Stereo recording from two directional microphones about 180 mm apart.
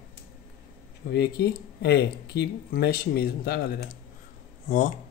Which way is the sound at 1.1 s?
65° left (ahead or behind).